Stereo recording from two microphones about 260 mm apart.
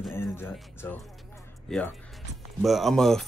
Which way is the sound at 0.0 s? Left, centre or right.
Centre.